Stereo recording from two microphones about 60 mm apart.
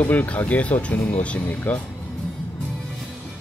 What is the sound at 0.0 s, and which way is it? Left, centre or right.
Speech, left.